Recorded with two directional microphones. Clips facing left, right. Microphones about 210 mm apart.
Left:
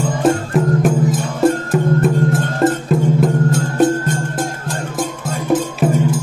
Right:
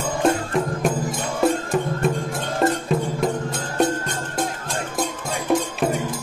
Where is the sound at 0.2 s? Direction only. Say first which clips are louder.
Left 4 dB; centre (ahead or behind).